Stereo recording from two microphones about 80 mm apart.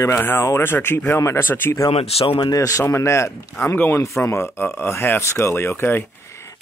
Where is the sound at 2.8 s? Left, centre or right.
Left.